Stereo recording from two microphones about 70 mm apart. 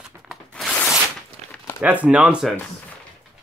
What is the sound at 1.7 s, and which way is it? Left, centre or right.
Speech, right.